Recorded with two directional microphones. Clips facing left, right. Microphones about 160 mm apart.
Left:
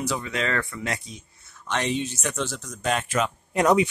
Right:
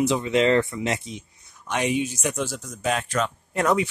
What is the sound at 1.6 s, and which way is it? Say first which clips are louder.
Speech: right 2 dB; 10° right (ahead or behind).